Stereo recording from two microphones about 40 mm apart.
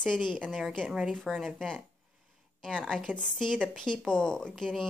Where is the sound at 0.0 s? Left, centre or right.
Centre.